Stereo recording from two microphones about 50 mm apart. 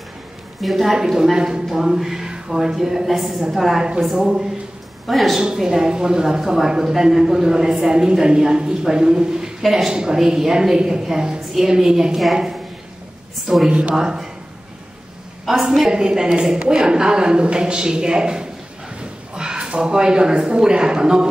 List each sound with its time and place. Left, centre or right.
0.6 s a man's voice: centre
0.9 s a woman's voice: centre
3.8 s a woman's voice: centre
5.4 s a woman's voice: centre
9.6 s a man's voice: centre
13.7 s a woman's voice: right
15.7 s a woman's voice: centre